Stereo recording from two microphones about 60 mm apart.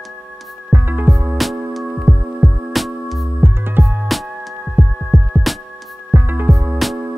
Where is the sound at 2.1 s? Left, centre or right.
Centre.